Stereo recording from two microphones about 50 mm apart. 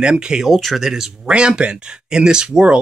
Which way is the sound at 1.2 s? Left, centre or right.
Right.